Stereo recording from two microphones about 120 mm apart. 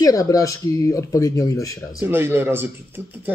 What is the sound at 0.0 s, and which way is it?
A man's voice, 30° left (ahead or behind).